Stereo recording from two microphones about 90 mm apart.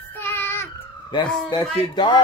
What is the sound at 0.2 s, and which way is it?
Child singing, 25° left (ahead or behind).